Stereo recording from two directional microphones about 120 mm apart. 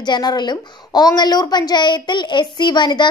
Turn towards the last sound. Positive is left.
turn(degrees=40)  # may be behind; listen again after turning